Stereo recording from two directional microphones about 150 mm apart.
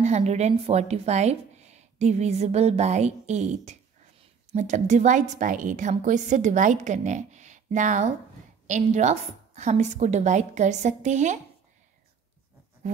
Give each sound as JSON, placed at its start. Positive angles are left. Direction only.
{"t": 0.0, "sound": "a woman's voice", "side_deg": -50}